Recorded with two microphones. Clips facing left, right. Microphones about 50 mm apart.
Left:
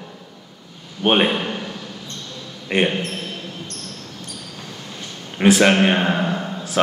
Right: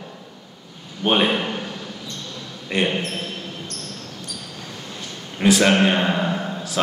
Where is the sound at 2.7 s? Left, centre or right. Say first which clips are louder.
Left 3 dB; left.